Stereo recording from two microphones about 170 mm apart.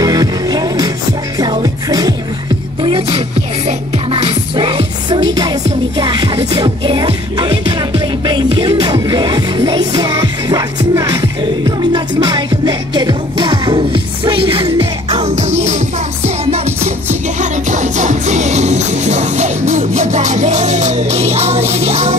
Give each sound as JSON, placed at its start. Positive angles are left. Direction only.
{"t": 0.0, "sound": "music", "side_deg": -20}
{"t": 2.8, "sound": "music", "side_deg": -35}